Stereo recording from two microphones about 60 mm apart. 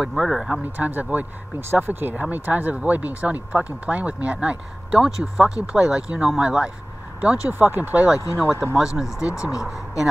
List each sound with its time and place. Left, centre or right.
0.0 s speech: centre
0.7 s speech: right
4.9 s speech: centre
7.2 s speech: right
8.4 s speech: right
8.7 s speech: centre
9.3 s speech: left